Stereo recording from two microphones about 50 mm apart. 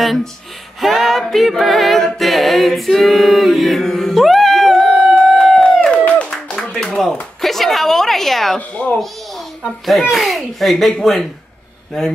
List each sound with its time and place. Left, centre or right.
0.0 s speech: centre
2.1 s a capella: centre
6.3 s clapping: centre
7.4 s a sound: centre
8.5 s speech: left
9.6 s speech: centre